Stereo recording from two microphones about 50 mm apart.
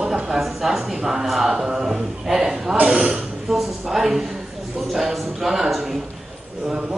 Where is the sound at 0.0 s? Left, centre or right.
Centre.